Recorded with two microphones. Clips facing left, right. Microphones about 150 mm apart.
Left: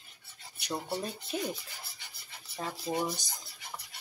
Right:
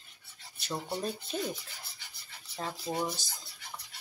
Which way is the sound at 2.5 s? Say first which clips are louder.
Left 1 dB; 5° left (ahead or behind).